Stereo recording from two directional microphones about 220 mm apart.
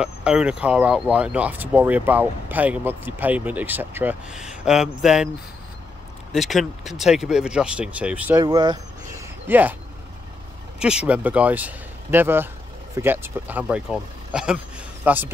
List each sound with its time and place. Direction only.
0.0 s speech: 5° right (ahead or behind)
6.3 s speech: centre (ahead or behind)
8.4 s speech: 20° right (ahead or behind)
10.8 s speech: 5° right (ahead or behind)